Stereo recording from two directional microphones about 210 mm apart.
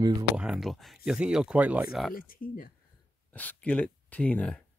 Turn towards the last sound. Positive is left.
turn(degrees=5)  # may be behind; listen again after turning